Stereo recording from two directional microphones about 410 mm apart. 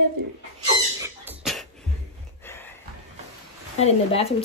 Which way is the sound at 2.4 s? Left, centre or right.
Centre.